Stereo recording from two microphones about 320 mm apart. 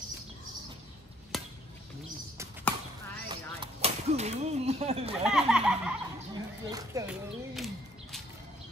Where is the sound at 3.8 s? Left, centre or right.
Centre.